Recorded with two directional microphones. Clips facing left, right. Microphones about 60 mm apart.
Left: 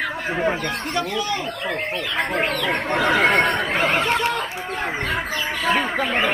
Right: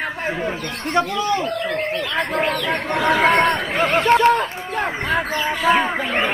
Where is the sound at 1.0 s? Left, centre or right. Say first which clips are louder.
Right 7 dB; right.